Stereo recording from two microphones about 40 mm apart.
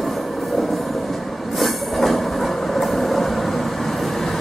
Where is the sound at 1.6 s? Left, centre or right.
Centre.